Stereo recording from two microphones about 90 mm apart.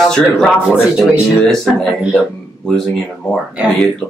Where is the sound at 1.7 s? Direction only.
5° right (ahead or behind).